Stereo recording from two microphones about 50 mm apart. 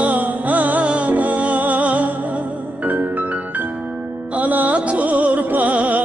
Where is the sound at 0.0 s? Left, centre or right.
Right.